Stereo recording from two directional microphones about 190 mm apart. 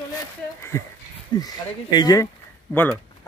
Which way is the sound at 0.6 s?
15° left (ahead or behind).